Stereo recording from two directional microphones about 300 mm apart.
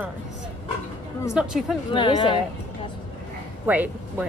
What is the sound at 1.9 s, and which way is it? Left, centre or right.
Speech, centre.